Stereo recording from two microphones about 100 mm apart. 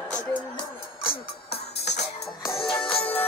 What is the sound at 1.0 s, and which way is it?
Music, 75° left (ahead or behind).